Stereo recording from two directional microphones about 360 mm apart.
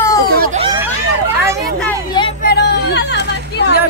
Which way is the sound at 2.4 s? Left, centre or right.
Left.